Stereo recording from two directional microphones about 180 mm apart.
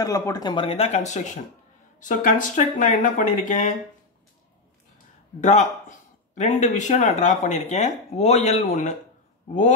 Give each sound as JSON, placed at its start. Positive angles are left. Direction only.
{"t": 0.0, "sound": "speech", "side_deg": 20}
{"t": 5.4, "sound": "speech", "side_deg": 40}